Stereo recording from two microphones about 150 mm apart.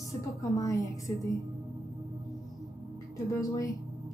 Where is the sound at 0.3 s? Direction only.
20° left (ahead or behind).